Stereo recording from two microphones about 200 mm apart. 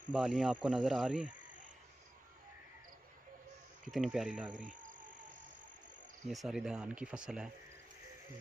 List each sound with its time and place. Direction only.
0.1 s cricket: 5° right (ahead or behind)
3.9 s cricket: centre (ahead or behind)
4.6 s cricket: 40° right (ahead or behind)
6.2 s cricket: centre (ahead or behind)